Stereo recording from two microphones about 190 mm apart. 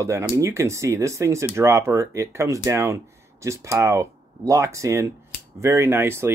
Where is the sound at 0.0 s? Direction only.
15° right (ahead or behind).